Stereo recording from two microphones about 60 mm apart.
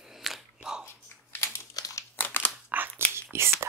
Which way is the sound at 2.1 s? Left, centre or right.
Left.